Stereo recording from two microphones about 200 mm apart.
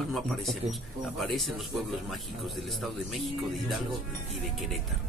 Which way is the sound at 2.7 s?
Centre (ahead or behind).